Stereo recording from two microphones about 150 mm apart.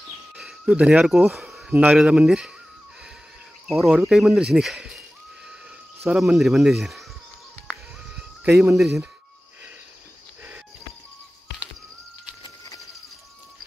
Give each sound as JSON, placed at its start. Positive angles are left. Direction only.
{"t": 0.4, "sound": "speech", "side_deg": -5}
{"t": 3.6, "sound": "speech", "side_deg": 0}
{"t": 6.0, "sound": "speech", "side_deg": -5}
{"t": 8.7, "sound": "speech", "side_deg": 0}
{"t": 12.4, "sound": "bird", "side_deg": 25}